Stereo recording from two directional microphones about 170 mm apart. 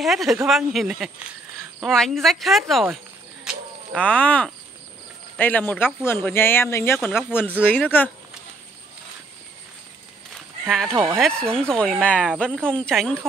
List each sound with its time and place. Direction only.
0.0 s speech: centre (ahead or behind)
3.4 s a sound: 5° left (ahead or behind)
5.4 s speech: 10° left (ahead or behind)
10.9 s speech: 15° right (ahead or behind)
11.1 s speech: 5° left (ahead or behind)